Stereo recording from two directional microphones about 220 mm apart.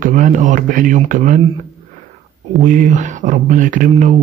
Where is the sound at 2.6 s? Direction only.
35° right (ahead or behind).